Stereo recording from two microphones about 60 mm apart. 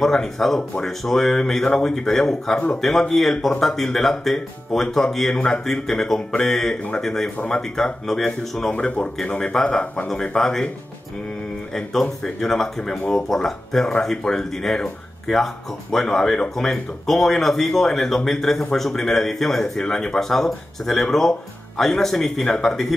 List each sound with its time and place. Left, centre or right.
0.0 s speech: centre
7.3 s speech: left
7.7 s speech: centre
8.7 s speech: left
11.7 s speech: centre